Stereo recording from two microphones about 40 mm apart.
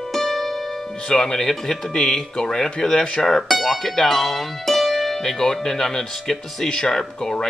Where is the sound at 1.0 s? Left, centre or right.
Centre.